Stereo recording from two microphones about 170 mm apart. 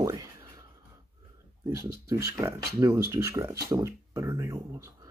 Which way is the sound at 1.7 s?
20° right (ahead or behind).